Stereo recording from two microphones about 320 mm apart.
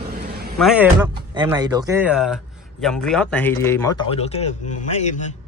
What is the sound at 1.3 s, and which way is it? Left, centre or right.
A man's voice, centre.